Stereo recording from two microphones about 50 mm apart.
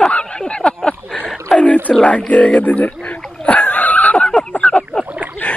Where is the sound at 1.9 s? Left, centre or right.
Left.